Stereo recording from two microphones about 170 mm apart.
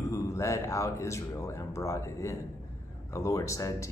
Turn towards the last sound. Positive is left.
turn(degrees=20)  # may be behind; listen again after turning